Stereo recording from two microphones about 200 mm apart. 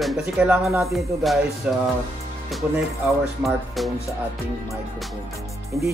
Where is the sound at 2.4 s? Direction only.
Centre (ahead or behind).